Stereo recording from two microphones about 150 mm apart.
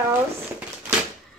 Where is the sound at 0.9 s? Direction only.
15° right (ahead or behind).